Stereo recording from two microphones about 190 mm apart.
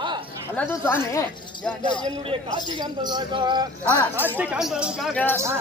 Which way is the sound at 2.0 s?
30° right (ahead or behind).